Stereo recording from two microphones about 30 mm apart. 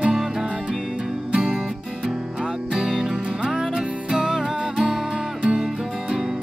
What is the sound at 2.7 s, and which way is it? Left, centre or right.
Music, centre.